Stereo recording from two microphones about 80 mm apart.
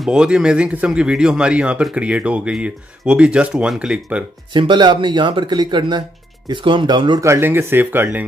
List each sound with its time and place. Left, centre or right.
0.0 s speech: centre
4.6 s speech: right
6.5 s speech: right
7.2 s speech: right